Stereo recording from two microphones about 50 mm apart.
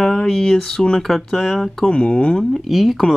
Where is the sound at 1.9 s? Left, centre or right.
Centre.